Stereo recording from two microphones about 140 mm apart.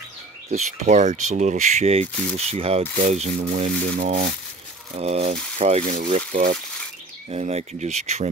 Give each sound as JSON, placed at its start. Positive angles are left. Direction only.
{"t": 0.6, "sound": "speech", "side_deg": -55}
{"t": 4.9, "sound": "speech", "side_deg": -50}